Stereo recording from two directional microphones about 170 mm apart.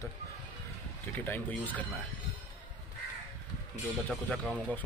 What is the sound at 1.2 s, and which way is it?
Speech, 10° left (ahead or behind).